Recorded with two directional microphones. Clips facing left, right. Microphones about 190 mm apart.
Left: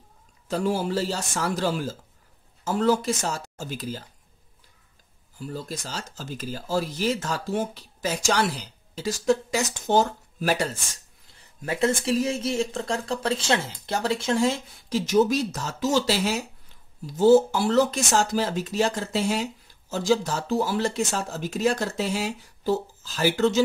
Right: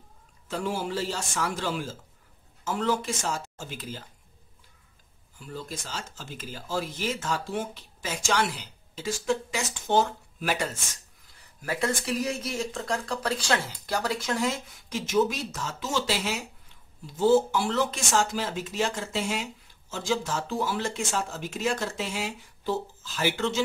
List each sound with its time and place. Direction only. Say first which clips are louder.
0.5 s speech: left 5 dB; 40° left (ahead or behind)
5.4 s speech: left 4 dB; 40° left (ahead or behind)